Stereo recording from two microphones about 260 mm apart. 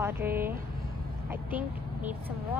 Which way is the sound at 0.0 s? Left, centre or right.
Centre.